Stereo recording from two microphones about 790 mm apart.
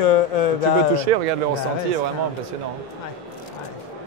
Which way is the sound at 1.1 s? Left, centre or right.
Right.